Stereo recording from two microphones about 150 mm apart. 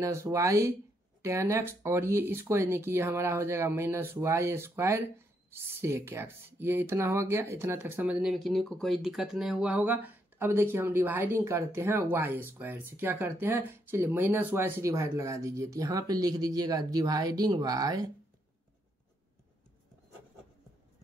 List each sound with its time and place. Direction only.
0.0 s speech: 20° right (ahead or behind)